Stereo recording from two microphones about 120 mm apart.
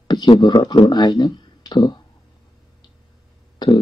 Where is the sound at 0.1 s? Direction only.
40° left (ahead or behind).